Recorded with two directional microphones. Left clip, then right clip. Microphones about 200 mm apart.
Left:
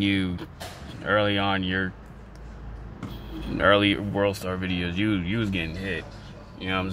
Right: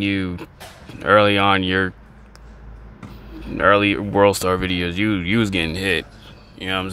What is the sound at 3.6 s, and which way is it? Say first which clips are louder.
Speech: right 5 dB; 10° right (ahead or behind).